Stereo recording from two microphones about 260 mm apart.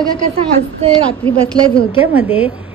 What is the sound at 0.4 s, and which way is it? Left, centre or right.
A woman's voice, right.